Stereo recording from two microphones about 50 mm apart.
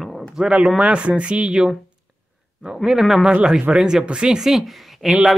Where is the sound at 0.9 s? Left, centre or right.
Right.